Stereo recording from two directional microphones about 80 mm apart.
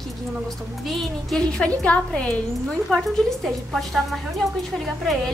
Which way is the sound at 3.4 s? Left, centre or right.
Centre.